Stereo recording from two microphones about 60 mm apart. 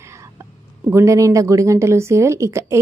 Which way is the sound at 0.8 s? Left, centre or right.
Right.